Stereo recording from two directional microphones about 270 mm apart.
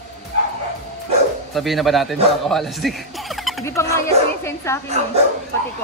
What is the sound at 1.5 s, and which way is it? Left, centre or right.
A man's voice, centre.